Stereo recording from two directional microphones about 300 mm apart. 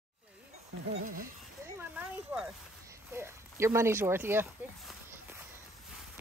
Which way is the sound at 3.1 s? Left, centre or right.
Centre.